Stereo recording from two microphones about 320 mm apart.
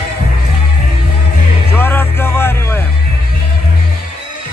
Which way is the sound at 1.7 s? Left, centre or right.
Centre.